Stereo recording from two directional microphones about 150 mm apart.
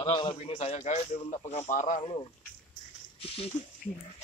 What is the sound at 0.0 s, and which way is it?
Speech, 30° left (ahead or behind).